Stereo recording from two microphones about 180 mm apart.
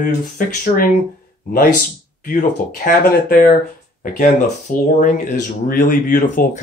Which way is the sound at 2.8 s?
50° left (ahead or behind).